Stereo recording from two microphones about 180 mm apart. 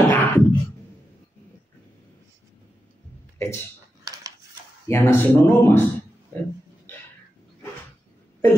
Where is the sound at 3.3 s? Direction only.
15° left (ahead or behind).